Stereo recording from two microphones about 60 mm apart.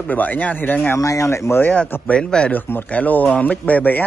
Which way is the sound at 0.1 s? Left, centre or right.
Left.